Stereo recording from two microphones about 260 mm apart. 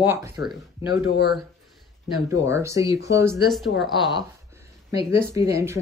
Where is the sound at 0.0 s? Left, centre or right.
Centre.